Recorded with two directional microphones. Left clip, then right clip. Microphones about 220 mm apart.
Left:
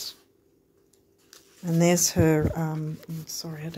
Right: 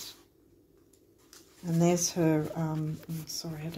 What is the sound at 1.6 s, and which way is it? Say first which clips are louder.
Speech: left 5 dB; 35° left (ahead or behind).